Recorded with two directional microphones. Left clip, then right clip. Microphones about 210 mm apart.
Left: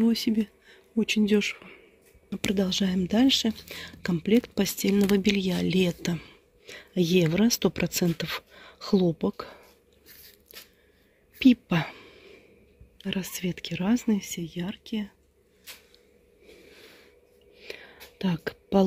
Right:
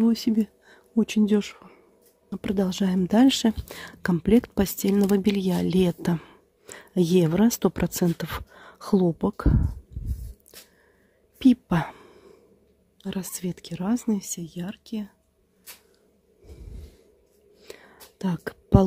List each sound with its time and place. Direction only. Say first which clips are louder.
0.0 s speech: right 2 dB; 20° right (ahead or behind)
11.3 s a sound: right 1 dB; 15° right (ahead or behind)
12.9 s speech: left 2 dB; 10° right (ahead or behind)
17.6 s whispering: left 3 dB; 10° right (ahead or behind)